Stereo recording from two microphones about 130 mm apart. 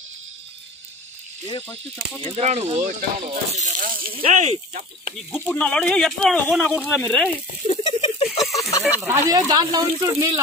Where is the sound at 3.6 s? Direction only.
90° right.